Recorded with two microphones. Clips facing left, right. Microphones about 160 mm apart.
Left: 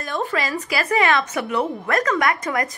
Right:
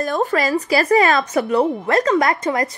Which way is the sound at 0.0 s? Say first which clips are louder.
Right 6 dB; 40° right (ahead or behind).